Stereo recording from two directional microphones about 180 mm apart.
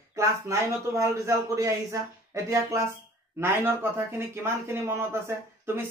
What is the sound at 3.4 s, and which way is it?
Speech, 15° right (ahead or behind).